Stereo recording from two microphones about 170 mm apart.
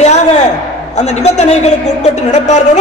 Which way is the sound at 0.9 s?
40° left (ahead or behind).